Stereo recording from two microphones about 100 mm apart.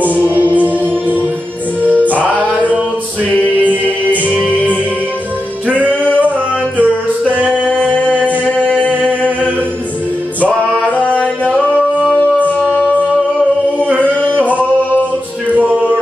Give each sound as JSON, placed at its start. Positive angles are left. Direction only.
{"t": 0.3, "sound": "music", "side_deg": -15}
{"t": 1.8, "sound": "music", "side_deg": -15}
{"t": 5.9, "sound": "music", "side_deg": 15}
{"t": 6.8, "sound": "music", "side_deg": -15}
{"t": 7.6, "sound": "music", "side_deg": 15}
{"t": 11.0, "sound": "music", "side_deg": 15}
{"t": 14.2, "sound": "singing", "side_deg": 15}
{"t": 15.5, "sound": "music", "side_deg": -15}